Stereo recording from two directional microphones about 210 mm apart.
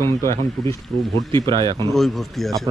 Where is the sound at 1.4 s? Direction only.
20° right (ahead or behind).